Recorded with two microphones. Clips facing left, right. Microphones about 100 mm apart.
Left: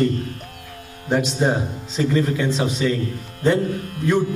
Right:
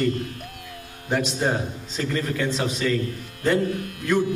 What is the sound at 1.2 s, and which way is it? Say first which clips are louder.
A man's voice: left 3 dB; 15° left (ahead or behind).